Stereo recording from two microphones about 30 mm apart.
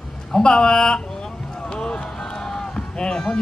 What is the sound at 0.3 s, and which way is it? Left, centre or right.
Speech, left.